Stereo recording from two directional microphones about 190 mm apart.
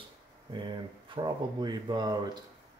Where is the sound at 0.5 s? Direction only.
25° right (ahead or behind).